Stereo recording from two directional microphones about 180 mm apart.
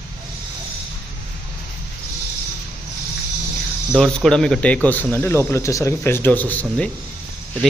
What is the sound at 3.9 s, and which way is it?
Speech, 5° left (ahead or behind).